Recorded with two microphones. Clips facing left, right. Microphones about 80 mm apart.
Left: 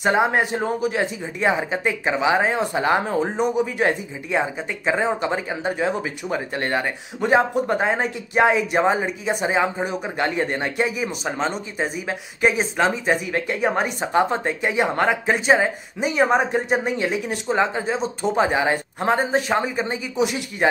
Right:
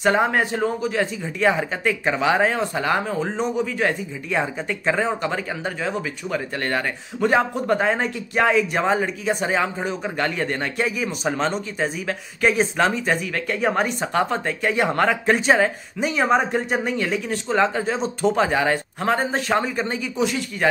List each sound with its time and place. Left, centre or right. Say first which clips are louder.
0.0 s speech: even; centre; by 3.2 s left
3.2 s speech: left 2 dB; centre
3.6 s speech: left 1 dB; left
4.3 s speech: left 1 dB; centre
4.9 s speech: left 1 dB; centre
13.0 s speech: left 2 dB; centre
14.1 s speech: left 4 dB; left
14.7 s speech: right 1 dB; centre
18.3 s speech: left 3 dB; centre